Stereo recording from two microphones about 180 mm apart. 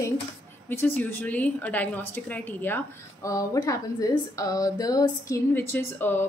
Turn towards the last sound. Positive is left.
turn(degrees=10)  # may be behind; listen again after turning